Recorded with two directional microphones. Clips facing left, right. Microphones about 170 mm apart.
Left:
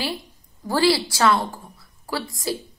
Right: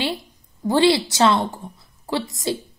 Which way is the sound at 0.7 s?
20° right (ahead or behind).